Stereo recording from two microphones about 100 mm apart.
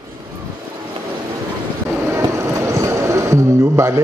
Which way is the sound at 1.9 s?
30° right (ahead or behind).